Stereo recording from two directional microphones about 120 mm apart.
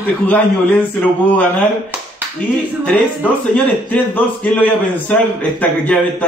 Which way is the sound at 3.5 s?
10° left (ahead or behind).